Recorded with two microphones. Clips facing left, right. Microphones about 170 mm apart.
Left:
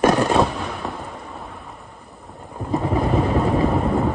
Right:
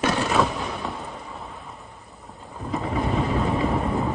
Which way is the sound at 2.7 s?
35° left (ahead or behind).